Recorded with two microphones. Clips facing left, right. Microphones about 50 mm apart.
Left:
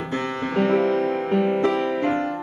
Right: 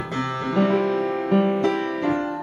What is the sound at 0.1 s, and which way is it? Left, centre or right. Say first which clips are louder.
Music: even; left.